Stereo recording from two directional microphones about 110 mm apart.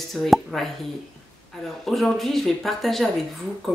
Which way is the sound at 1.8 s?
Centre (ahead or behind).